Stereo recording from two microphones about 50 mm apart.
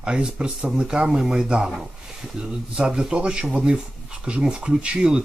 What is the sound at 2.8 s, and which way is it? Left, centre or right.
Speech, centre.